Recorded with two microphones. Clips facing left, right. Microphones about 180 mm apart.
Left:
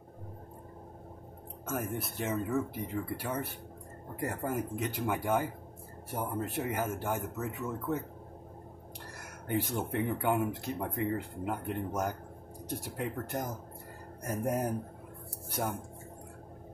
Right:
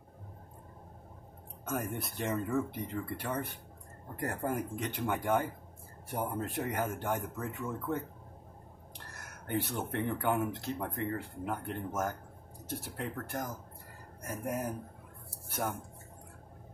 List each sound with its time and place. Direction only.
1.7 s speech: centre (ahead or behind)
9.5 s speech: 10° left (ahead or behind)
14.2 s speech: 30° left (ahead or behind)